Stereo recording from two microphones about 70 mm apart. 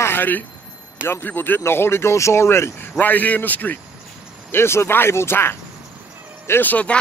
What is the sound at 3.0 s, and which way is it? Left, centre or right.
Speech, left.